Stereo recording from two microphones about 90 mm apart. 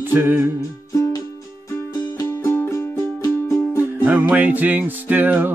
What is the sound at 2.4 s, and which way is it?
Music, 35° left (ahead or behind).